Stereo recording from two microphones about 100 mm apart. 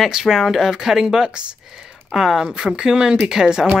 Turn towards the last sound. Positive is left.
turn(degrees=-5)  # may be behind; listen again after turning